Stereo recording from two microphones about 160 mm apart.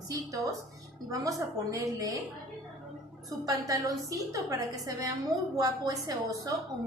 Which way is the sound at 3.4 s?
20° right (ahead or behind).